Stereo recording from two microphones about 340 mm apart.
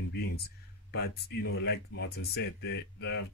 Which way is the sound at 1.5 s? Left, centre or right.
Left.